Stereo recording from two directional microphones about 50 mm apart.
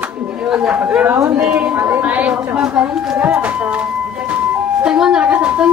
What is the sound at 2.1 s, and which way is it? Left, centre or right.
Speech, right.